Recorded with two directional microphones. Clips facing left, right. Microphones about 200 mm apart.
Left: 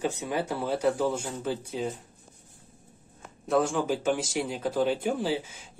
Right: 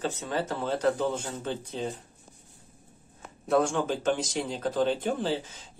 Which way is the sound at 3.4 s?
5° left (ahead or behind).